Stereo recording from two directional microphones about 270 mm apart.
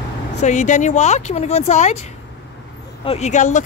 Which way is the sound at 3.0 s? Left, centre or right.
Left.